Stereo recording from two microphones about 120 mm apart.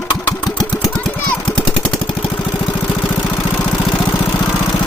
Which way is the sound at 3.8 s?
30° left (ahead or behind).